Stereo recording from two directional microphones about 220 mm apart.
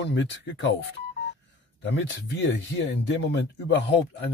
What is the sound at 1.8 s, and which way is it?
Speech, 55° left (ahead or behind).